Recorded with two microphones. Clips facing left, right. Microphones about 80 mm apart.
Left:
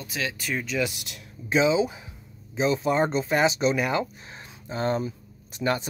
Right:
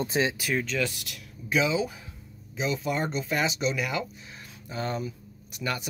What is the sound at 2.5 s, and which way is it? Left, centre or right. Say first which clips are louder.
Speech: left 6 dB; left.